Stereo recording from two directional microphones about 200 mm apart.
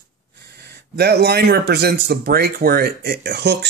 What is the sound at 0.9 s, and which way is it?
Speech, 55° right (ahead or behind).